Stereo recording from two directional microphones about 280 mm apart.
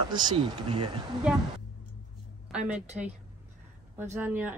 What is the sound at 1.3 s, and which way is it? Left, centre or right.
Speech, centre.